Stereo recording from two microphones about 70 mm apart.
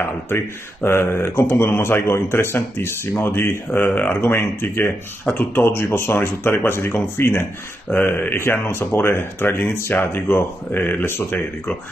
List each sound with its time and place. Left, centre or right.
0.8 s speech: left